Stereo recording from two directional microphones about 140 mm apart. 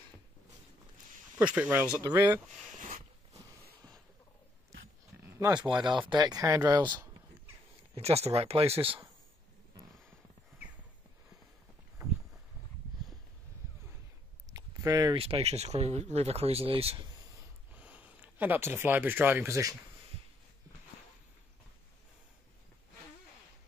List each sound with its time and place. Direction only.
1.4 s speech: 10° right (ahead or behind)
5.1 s a sound: 10° right (ahead or behind)
5.5 s speech: 30° right (ahead or behind)
7.9 s speech: 45° right (ahead or behind)
14.5 s a sound: 25° right (ahead or behind)
15.1 s speech: 45° right (ahead or behind)
17.7 s speech: 10° right (ahead or behind)